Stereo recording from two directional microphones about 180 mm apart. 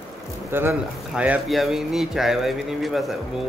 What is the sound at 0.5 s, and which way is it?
Speech, 10° right (ahead or behind).